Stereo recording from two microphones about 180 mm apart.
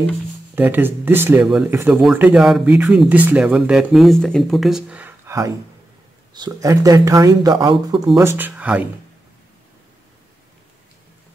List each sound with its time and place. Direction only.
0.6 s speech: 10° right (ahead or behind)